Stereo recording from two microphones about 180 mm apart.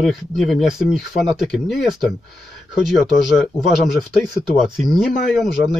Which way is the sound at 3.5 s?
Centre (ahead or behind).